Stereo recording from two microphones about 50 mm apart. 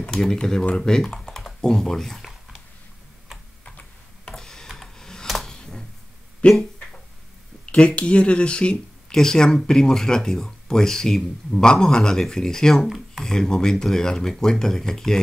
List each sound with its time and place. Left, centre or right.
0.0 s speech: centre
4.3 s tick-tock: centre
5.2 s a sound: centre
5.5 s a sound: centre
6.4 s speech: left
7.6 s speech: left
12.8 s speech: centre
13.2 s speech: centre